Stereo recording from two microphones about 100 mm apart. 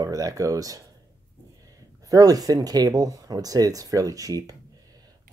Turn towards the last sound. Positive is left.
turn(degrees=-35)  # may be behind; listen again after turning